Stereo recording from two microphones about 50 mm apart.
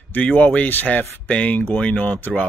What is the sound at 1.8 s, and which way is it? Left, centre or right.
Speech, left.